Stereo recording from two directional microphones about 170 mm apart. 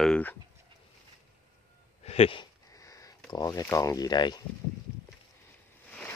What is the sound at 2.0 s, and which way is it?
Speech, 35° left (ahead or behind).